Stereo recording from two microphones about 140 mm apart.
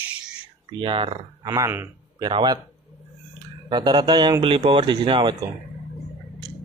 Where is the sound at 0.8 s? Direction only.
40° right (ahead or behind).